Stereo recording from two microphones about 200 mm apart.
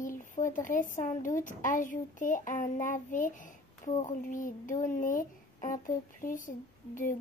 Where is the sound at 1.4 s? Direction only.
40° left (ahead or behind).